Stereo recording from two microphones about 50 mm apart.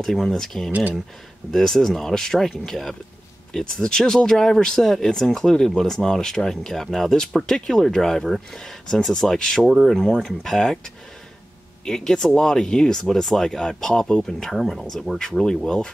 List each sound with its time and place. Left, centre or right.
0.0 s speech: centre
0.7 s speech: right
1.5 s speech: centre
11.8 s speech: centre